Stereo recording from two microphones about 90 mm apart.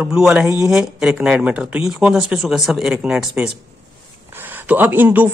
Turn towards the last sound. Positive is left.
turn(degrees=-20)  # may be behind; listen again after turning